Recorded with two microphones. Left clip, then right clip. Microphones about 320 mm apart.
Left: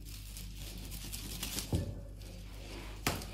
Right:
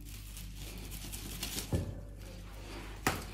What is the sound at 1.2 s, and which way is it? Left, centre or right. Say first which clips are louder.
Typewriter: right 1 dB; centre.